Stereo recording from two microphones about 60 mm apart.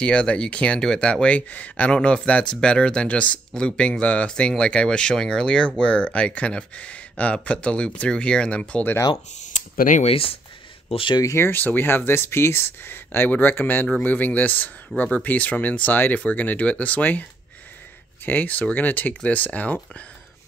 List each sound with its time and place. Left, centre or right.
0.0 s speech: centre
11.3 s speech: left
18.2 s speech: left